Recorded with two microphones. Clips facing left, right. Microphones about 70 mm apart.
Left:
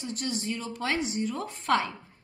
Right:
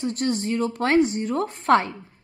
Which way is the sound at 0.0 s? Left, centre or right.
Right.